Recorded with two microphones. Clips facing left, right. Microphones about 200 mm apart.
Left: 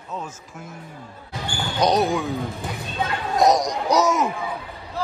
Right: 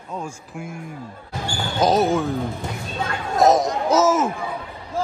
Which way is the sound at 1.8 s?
Centre (ahead or behind).